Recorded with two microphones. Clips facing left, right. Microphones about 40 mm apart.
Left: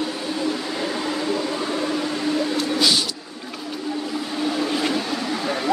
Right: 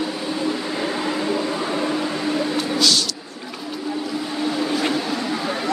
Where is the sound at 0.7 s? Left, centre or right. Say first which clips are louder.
Right 2 dB; centre.